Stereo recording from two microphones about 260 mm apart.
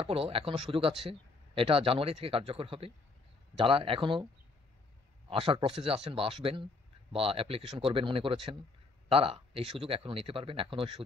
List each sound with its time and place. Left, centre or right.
0.0 s speech: right
5.3 s speech: right